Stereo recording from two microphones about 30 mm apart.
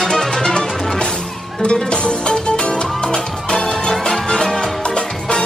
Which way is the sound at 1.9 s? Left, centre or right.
Left.